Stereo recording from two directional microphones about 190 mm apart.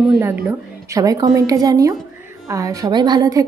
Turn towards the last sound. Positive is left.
turn(degrees=-20)  # may be behind; listen again after turning